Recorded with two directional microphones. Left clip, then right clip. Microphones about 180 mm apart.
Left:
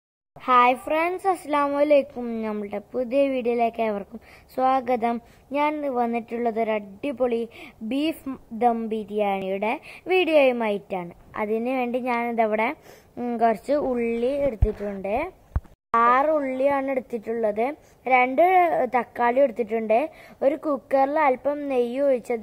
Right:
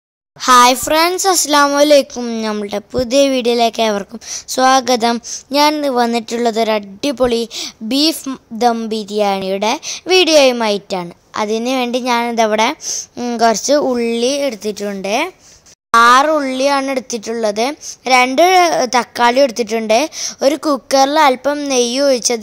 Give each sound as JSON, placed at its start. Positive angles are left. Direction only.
{"t": 0.4, "sound": "speech", "side_deg": -45}
{"t": 11.3, "sound": "speech", "side_deg": -35}